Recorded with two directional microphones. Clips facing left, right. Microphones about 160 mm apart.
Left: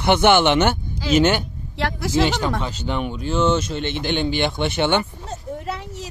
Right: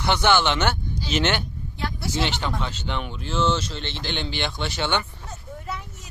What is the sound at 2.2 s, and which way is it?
Speech, 40° left (ahead or behind).